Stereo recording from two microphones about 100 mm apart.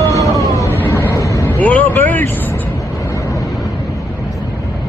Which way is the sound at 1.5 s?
15° left (ahead or behind).